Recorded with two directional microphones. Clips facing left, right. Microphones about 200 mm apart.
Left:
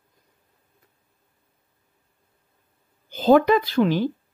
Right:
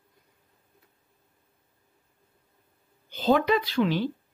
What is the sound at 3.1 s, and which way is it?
Speech, 45° left (ahead or behind).